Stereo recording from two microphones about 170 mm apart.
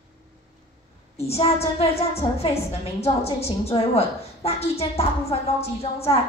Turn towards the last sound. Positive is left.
turn(degrees=35)  # may be behind; listen again after turning